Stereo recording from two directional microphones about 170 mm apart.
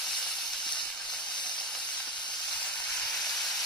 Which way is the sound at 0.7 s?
25° left (ahead or behind).